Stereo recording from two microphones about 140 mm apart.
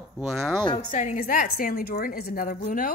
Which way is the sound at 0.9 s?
65° left (ahead or behind).